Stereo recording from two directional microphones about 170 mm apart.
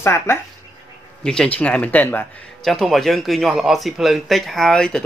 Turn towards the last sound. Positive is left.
turn(degrees=5)  # may be behind; listen again after turning